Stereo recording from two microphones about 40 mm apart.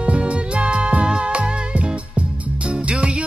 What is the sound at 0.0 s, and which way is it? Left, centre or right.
Music, right.